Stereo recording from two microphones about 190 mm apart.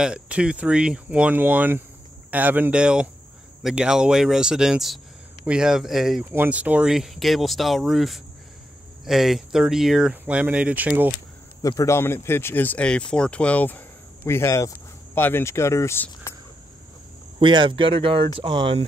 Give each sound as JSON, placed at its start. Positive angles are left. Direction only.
{"t": 0.0, "sound": "speech", "side_deg": -5}
{"t": 11.6, "sound": "speech", "side_deg": 15}
{"t": 17.4, "sound": "speech", "side_deg": -25}